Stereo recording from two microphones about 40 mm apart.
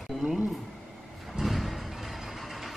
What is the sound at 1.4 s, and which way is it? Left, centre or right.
Vehicle, centre.